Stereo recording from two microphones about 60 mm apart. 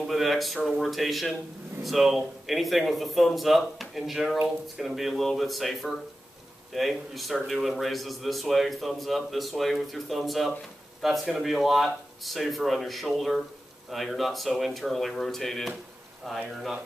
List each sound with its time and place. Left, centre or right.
0.0 s a man's voice: centre